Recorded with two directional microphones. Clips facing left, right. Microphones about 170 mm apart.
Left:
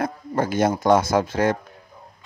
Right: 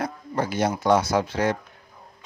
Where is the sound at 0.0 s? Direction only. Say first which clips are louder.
Left 3 dB; 50° left (ahead or behind).